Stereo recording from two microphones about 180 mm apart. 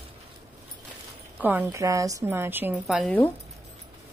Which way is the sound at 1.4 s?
10° right (ahead or behind).